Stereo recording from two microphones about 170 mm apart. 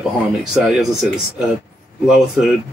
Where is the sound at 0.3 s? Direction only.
5° right (ahead or behind).